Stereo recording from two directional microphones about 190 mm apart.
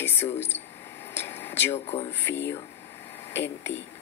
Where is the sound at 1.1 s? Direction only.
10° left (ahead or behind).